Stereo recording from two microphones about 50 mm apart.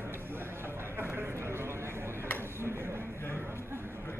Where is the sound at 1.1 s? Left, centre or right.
Right.